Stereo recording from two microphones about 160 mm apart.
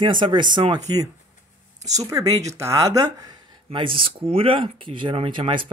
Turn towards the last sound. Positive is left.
turn(degrees=-35)  # may be behind; listen again after turning